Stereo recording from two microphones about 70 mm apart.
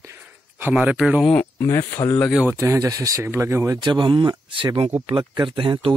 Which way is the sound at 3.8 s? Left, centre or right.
Right.